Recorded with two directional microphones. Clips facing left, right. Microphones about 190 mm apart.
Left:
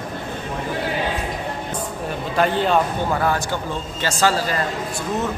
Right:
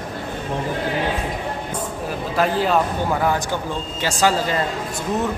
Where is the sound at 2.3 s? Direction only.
Centre (ahead or behind).